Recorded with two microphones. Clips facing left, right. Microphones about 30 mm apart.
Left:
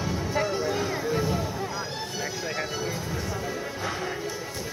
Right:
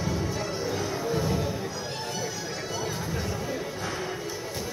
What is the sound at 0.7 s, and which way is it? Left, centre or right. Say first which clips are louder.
Music: left 2 dB; centre.